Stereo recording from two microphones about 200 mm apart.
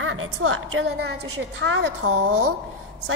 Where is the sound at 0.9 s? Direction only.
55° right (ahead or behind).